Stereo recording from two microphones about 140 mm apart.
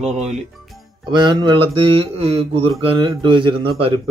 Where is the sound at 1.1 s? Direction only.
35° right (ahead or behind).